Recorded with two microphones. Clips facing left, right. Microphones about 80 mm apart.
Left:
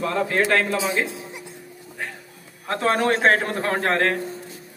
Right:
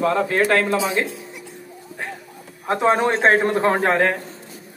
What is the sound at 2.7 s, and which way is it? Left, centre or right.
A man's voice, centre.